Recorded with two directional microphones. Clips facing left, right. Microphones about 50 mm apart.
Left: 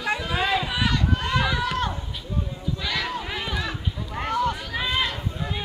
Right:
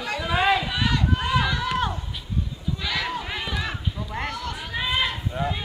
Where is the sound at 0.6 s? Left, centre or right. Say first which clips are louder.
Even; centre.